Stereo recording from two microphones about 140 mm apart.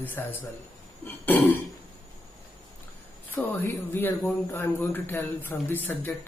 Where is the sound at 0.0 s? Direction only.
15° left (ahead or behind).